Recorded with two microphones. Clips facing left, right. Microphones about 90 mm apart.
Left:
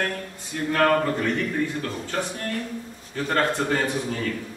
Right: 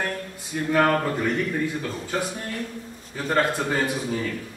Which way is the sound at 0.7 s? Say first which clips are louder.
Even; 10° right (ahead or behind).